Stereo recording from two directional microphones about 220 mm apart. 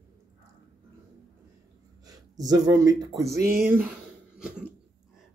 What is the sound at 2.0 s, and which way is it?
Speech, 15° right (ahead or behind).